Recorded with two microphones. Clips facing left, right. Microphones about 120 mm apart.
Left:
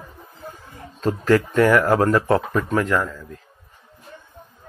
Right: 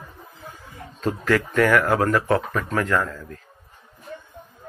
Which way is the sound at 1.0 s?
30° left (ahead or behind).